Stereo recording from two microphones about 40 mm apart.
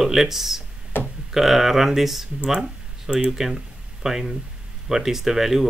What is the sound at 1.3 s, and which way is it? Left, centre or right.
Speech, centre.